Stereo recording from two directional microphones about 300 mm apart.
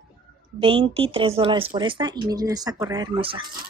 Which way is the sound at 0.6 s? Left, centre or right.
Centre.